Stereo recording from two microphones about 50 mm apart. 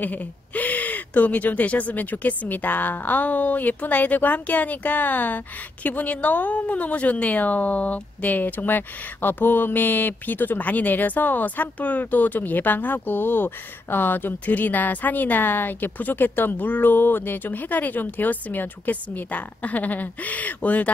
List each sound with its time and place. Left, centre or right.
0.0 s a woman's voice: left